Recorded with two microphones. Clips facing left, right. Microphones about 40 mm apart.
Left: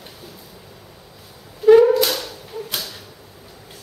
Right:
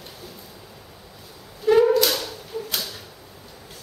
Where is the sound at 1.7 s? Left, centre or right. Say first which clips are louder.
Left 2 dB; centre.